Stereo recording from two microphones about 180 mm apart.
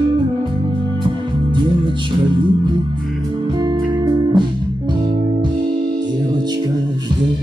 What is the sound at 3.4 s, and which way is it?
Music, 20° right (ahead or behind).